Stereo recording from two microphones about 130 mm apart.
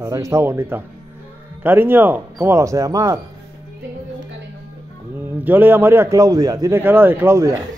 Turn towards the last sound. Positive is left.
turn(degrees=-20)  # may be behind; listen again after turning